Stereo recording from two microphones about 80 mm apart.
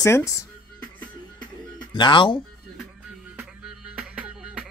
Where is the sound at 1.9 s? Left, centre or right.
Left.